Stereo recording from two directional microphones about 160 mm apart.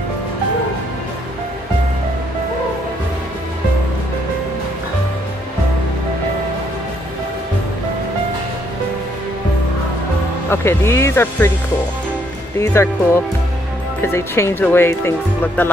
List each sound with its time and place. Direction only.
10.5 s speech: 15° left (ahead or behind)
12.5 s speech: 15° left (ahead or behind)